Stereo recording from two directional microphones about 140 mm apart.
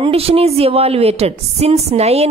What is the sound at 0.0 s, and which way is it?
A woman's voice, 45° right (ahead or behind).